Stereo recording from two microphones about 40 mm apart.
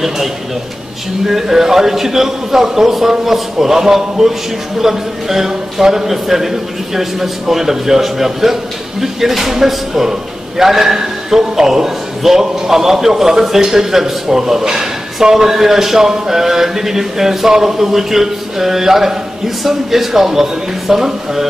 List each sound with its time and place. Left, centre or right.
1.2 s a man's voice: centre